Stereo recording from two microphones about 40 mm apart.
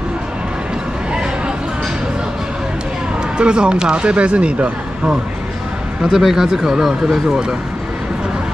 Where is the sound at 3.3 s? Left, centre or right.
Right.